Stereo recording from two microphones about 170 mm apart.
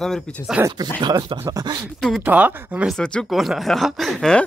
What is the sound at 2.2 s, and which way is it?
Speech, 10° right (ahead or behind).